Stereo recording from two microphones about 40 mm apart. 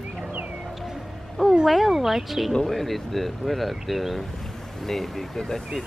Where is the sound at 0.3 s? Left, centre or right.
Right.